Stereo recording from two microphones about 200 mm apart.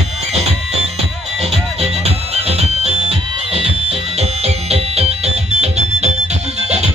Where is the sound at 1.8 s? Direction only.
30° right (ahead or behind).